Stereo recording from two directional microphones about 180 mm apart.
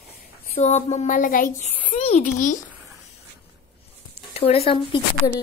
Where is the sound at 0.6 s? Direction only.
40° left (ahead or behind).